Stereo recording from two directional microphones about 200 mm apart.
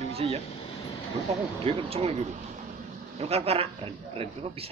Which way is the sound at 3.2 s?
30° right (ahead or behind).